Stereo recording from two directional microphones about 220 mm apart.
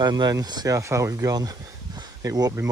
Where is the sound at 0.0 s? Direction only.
20° right (ahead or behind).